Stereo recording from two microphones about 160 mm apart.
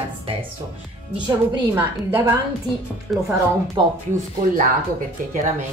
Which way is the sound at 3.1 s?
Centre (ahead or behind).